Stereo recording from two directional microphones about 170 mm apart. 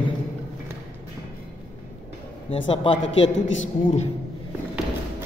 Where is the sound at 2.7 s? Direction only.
30° left (ahead or behind).